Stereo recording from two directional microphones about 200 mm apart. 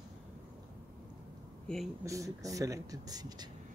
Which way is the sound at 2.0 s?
15° right (ahead or behind).